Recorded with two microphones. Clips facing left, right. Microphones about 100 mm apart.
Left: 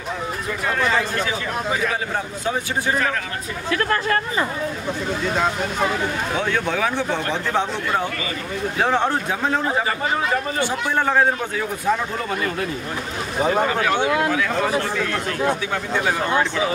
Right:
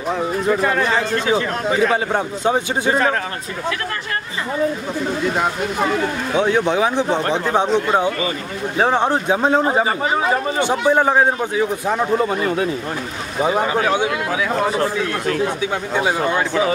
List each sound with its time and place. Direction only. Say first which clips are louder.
1.2 s a man's voice: right 6 dB; 30° right (ahead or behind)
6.3 s a man's voice: right 9 dB; 20° right (ahead or behind)
13.4 s a man's voice: right 2 dB; 15° right (ahead or behind)